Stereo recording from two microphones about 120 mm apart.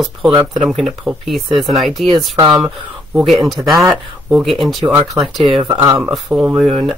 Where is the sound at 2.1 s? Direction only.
45° right (ahead or behind).